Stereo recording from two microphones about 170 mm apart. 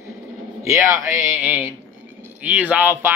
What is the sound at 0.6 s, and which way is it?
Speech, 15° right (ahead or behind).